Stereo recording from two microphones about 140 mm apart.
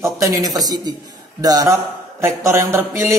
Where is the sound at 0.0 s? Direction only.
25° right (ahead or behind).